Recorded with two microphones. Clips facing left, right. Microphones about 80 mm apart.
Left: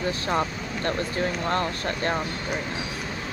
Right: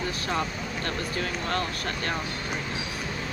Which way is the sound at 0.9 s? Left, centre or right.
Left.